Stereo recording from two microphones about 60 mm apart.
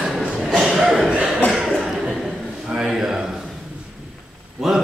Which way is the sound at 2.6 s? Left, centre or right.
Centre.